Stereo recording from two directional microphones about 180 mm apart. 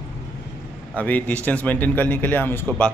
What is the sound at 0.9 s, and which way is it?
A man's voice, 10° left (ahead or behind).